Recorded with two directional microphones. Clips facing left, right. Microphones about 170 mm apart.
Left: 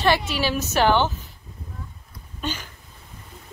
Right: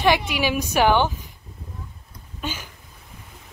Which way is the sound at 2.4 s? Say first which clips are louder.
Left 1 dB; 10° right (ahead or behind).